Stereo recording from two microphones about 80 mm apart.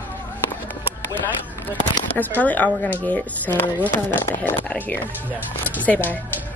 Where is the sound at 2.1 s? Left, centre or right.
Left.